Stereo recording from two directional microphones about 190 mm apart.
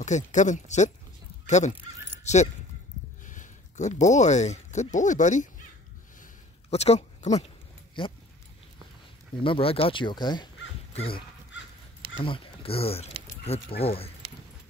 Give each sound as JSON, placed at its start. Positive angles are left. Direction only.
{"t": 0.0, "sound": "speech", "side_deg": 40}
{"t": 2.2, "sound": "speech", "side_deg": 35}
{"t": 6.7, "sound": "speech", "side_deg": 35}
{"t": 9.4, "sound": "speech", "side_deg": 30}
{"t": 12.2, "sound": "speech", "side_deg": 30}